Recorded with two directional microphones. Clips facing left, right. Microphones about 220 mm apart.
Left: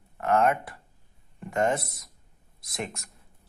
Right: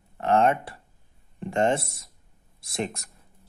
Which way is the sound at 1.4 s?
30° right (ahead or behind).